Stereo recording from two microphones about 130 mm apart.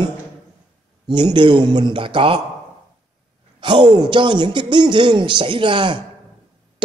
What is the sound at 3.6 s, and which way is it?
Speech, 35° right (ahead or behind).